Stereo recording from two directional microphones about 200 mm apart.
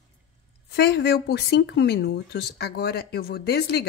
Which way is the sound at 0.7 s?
55° left (ahead or behind).